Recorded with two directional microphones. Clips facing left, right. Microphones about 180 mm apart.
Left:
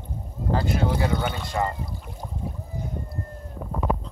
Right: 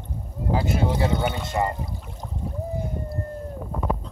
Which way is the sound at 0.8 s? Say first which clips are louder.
Right 1 dB; 20° right (ahead or behind).